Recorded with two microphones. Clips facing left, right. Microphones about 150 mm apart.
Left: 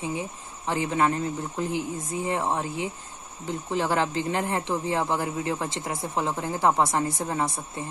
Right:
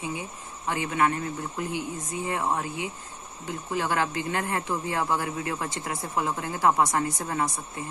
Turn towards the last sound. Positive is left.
turn(degrees=25)  # may be behind; listen again after turning